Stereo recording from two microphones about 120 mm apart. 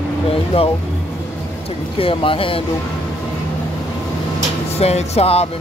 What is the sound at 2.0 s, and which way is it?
Speech, 50° left (ahead or behind).